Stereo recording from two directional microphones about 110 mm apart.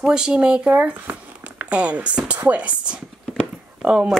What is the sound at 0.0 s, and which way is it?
Speech, 5° right (ahead or behind).